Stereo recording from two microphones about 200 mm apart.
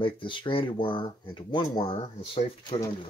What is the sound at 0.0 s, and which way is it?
Speech, 25° left (ahead or behind).